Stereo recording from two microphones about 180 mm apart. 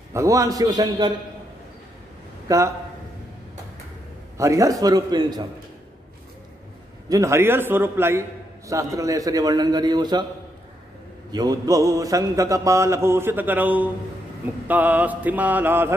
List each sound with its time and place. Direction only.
0.1 s a man's voice: 15° right (ahead or behind)
2.4 s a man's voice: 15° right (ahead or behind)
4.4 s a man's voice: 20° right (ahead or behind)
7.1 s a man's voice: 15° right (ahead or behind)
11.3 s a man's voice: 20° right (ahead or behind)